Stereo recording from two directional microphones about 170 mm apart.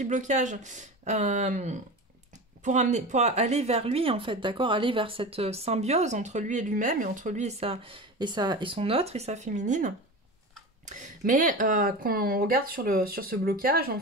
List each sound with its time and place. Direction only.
0.0 s speech: 45° right (ahead or behind)